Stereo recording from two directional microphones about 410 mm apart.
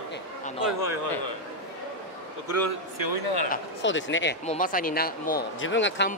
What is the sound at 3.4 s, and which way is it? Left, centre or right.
Speech, left.